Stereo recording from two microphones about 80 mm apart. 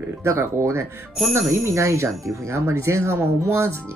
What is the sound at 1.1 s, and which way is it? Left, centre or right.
Speech, centre.